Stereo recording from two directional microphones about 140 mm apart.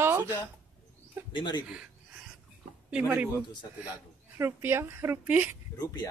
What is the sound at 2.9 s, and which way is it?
Speech, 10° right (ahead or behind).